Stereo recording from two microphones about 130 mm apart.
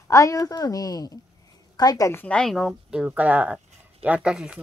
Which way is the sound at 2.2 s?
5° left (ahead or behind).